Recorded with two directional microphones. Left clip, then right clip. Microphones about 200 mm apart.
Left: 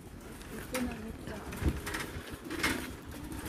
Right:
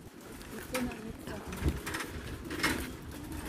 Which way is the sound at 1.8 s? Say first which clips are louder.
Even; 10° left (ahead or behind).